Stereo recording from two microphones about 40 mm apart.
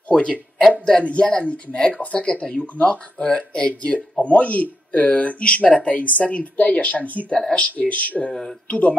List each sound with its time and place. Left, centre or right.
0.1 s speech: left
4.2 s speech: left
8.3 s speech: centre
8.6 s speech: left